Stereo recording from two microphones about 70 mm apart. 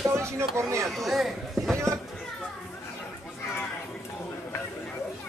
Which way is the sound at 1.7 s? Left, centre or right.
Right.